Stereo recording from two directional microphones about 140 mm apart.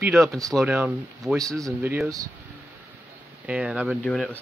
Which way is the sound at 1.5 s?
20° right (ahead or behind).